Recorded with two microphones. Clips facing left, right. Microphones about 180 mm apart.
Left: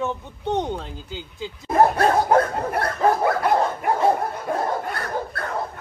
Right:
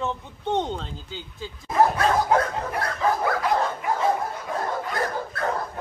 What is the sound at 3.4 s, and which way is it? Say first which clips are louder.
Dog: left 3 dB; 55° left (ahead or behind).